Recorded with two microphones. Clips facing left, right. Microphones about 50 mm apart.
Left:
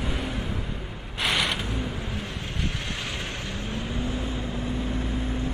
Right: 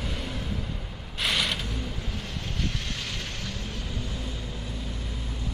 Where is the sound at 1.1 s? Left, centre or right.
Centre.